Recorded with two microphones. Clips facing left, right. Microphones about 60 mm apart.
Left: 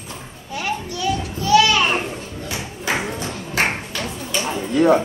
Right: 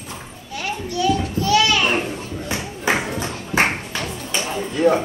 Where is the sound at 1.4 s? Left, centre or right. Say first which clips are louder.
Left 3 dB; left.